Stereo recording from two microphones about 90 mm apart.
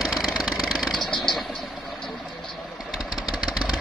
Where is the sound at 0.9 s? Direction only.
60° left (ahead or behind).